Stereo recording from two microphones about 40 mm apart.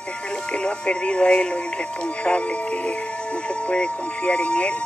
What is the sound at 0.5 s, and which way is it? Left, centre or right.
Speech, left.